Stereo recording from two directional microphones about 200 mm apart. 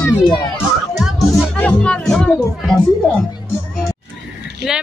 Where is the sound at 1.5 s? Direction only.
5° left (ahead or behind).